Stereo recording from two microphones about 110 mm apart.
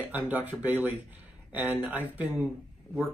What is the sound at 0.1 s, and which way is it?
Speech, 15° right (ahead or behind).